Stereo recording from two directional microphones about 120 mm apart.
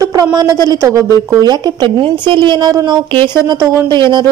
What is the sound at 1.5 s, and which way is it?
A woman's voice, 35° right (ahead or behind).